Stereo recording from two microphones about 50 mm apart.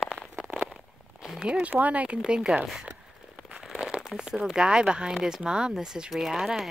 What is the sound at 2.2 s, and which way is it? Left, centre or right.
Speech, centre.